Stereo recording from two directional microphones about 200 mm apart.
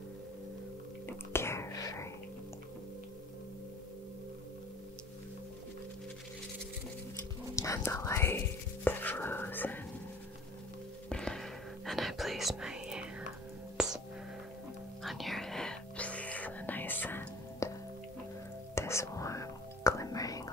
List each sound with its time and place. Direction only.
1.0 s whispering: 10° left (ahead or behind)
7.5 s whispering: 15° left (ahead or behind)
11.1 s whispering: 5° left (ahead or behind)
13.8 s music: 5° right (ahead or behind)
15.0 s whispering: centre (ahead or behind)
18.8 s whispering: 15° left (ahead or behind)